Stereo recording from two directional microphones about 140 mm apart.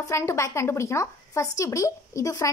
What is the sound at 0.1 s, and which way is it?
A woman's voice, 20° left (ahead or behind).